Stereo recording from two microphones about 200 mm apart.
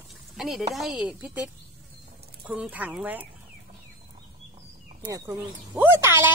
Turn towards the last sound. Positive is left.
turn(degrees=-10)  # may be behind; listen again after turning